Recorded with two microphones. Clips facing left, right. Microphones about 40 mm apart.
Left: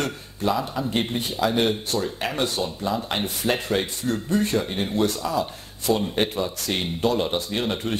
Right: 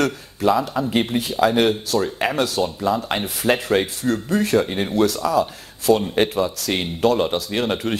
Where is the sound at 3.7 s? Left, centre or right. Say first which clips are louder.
Right 5 dB; right.